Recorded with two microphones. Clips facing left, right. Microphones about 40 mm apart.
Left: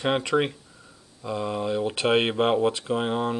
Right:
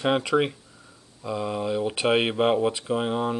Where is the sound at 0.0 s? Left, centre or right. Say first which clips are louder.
Right 1 dB; centre.